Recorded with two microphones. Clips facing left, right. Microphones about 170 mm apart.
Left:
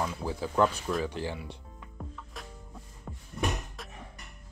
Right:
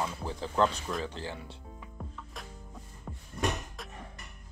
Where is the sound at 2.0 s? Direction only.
Centre (ahead or behind).